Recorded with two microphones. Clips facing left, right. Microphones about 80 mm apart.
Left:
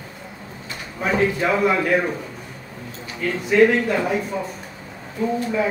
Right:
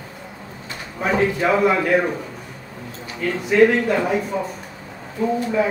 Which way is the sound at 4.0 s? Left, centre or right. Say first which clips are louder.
Right 2 dB; centre.